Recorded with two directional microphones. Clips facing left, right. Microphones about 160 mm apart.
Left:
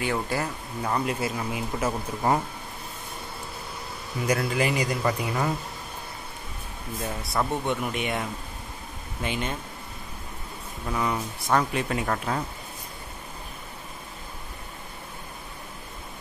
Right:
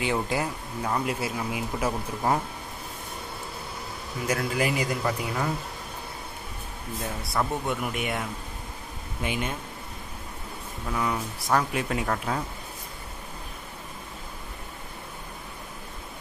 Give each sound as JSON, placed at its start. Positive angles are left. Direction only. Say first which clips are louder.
{"t": 0.0, "sound": "speech", "louder": "right 1 dB", "side_deg": -15}
{"t": 0.8, "sound": "speech", "louder": "left 1 dB", "side_deg": -5}
{"t": 4.3, "sound": "speech", "louder": "left 2 dB", "side_deg": -5}
{"t": 7.0, "sound": "speech", "louder": "left 1 dB", "side_deg": 0}
{"t": 10.9, "sound": "speech", "louder": "left 1 dB", "side_deg": 0}